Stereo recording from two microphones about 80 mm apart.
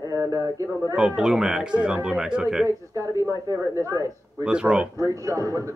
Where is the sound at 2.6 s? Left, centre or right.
Right.